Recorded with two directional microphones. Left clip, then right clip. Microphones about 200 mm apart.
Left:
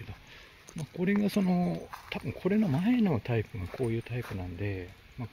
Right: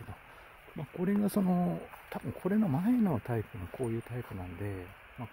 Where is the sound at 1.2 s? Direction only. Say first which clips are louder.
Left 1 dB; 20° right (ahead or behind).